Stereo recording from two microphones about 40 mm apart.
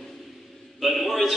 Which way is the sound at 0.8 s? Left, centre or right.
Centre.